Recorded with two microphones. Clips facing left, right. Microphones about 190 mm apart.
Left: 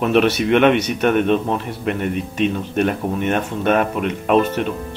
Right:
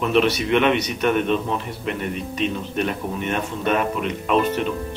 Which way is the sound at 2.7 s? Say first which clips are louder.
Left 6 dB; 50° left (ahead or behind).